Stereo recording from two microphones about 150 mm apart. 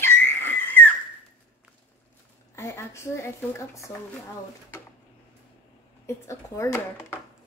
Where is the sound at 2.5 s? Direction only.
20° left (ahead or behind).